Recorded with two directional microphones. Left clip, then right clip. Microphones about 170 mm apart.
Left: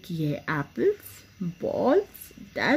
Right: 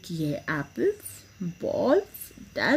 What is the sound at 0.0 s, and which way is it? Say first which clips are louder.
A child's voice: even; 15° left (ahead or behind).